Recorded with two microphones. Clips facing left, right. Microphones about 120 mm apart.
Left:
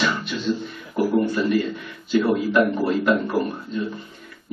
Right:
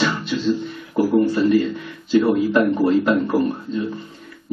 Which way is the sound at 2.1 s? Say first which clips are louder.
Right 3 dB; 30° right (ahead or behind).